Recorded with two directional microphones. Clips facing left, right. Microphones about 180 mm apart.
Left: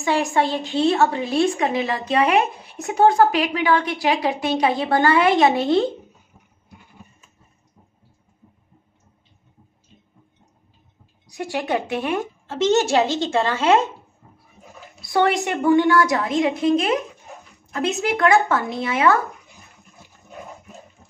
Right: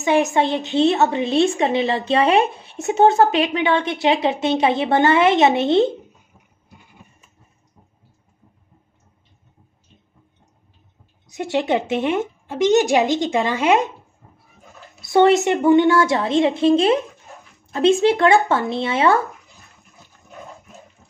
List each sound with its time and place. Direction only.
0.0 s a woman's voice: 20° right (ahead or behind)
11.2 s a woman's voice: 20° right (ahead or behind)
15.0 s a woman's voice: 20° right (ahead or behind)